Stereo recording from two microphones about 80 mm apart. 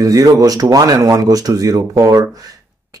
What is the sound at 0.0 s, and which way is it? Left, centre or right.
Speech, right.